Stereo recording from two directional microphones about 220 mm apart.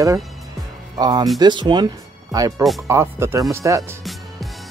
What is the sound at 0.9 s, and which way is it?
Speech, 15° right (ahead or behind).